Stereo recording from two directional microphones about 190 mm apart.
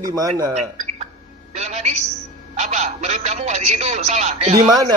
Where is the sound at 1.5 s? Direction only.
40° right (ahead or behind).